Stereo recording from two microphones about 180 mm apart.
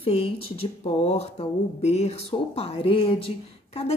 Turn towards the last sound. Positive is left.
turn(degrees=30)  # may be behind; listen again after turning